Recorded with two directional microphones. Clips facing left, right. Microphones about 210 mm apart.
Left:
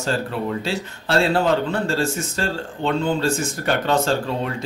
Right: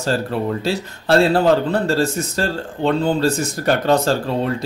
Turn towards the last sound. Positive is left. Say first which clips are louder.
# right 4 dB
turn(degrees=-40)  # may be behind; listen again after turning